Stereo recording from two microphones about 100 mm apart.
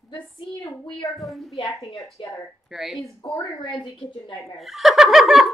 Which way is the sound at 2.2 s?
60° left (ahead or behind).